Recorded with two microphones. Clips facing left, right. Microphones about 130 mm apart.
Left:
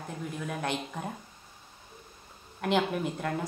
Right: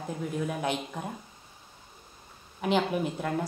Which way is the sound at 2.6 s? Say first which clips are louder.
Right 1 dB; centre (ahead or behind).